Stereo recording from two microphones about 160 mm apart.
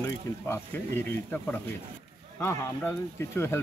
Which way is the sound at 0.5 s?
10° left (ahead or behind).